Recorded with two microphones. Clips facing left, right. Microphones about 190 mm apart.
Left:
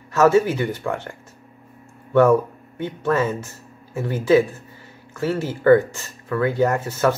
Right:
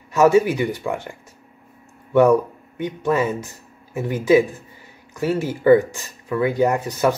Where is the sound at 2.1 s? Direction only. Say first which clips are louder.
Right 1 dB; 15° right (ahead or behind).